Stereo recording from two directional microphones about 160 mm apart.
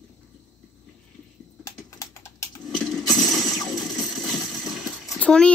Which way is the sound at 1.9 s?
20° left (ahead or behind).